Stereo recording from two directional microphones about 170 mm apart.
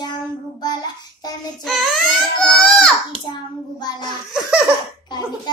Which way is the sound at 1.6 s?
Centre (ahead or behind).